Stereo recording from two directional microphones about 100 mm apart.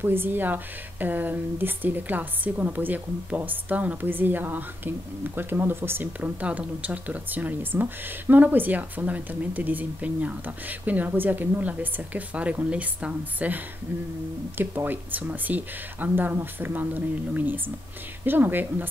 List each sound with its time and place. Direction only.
0.0 s speech: 20° right (ahead or behind)
14.6 s speech: 20° right (ahead or behind)